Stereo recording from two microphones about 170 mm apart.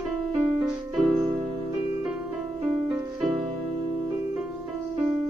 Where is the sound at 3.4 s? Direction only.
40° right (ahead or behind).